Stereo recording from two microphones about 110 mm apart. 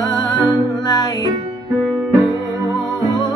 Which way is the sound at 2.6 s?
40° left (ahead or behind).